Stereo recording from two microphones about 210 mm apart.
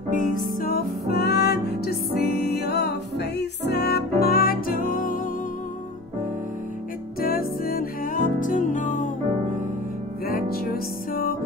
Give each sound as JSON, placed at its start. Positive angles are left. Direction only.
{"t": 0.6, "sound": "music", "side_deg": 45}
{"t": 7.2, "sound": "music", "side_deg": 45}
{"t": 10.2, "sound": "music", "side_deg": 45}